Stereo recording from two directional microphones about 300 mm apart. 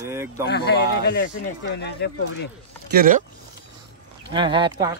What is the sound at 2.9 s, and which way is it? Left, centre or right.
Speech, right.